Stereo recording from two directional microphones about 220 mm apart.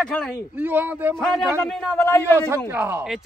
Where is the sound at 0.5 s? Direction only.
10° right (ahead or behind).